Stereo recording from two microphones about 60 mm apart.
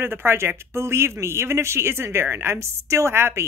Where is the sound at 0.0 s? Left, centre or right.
Right.